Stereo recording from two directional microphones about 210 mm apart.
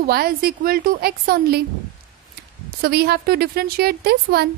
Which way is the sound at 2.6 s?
50° right (ahead or behind).